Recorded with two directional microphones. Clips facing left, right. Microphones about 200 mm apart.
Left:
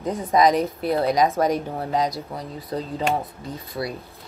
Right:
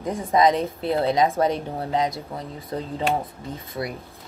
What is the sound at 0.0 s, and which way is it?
Speech, 25° left (ahead or behind).